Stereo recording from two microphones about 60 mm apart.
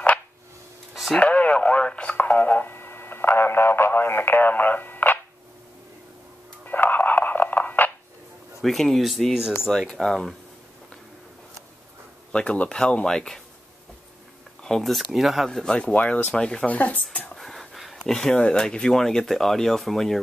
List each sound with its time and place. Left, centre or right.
1.2 s speech: left
6.6 s music: left
8.5 s speech: centre
12.3 s speech: centre
14.6 s speech: centre
15.7 s speech: centre
17.4 s a sound: centre
18.0 s speech: centre